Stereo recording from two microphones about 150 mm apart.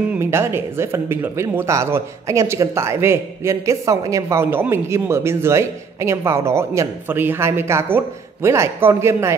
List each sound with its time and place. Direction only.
0.2 s speech: 15° right (ahead or behind)